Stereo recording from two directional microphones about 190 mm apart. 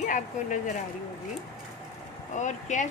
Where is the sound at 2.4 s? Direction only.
40° left (ahead or behind).